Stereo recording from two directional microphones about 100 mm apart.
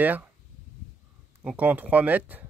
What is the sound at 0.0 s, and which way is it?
Speech, 15° right (ahead or behind).